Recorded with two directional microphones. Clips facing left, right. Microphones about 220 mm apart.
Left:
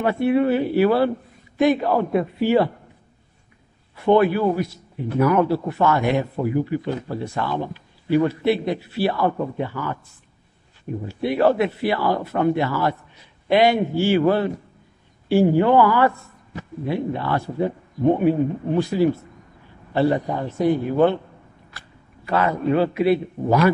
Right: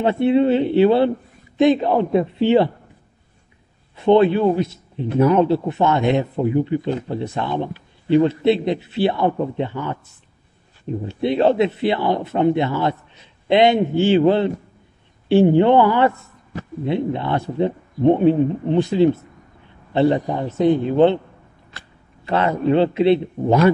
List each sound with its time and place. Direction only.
0.0 s a man's voice: 25° right (ahead or behind)
3.9 s a man's voice: 20° right (ahead or behind)